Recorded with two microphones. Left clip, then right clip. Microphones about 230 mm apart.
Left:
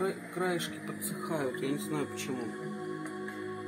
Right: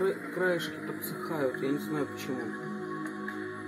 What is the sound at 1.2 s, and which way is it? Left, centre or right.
Speech, centre.